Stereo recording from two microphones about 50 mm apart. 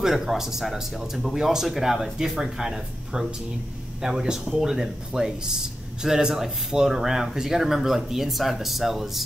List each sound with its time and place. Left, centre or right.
0.0 s speech: centre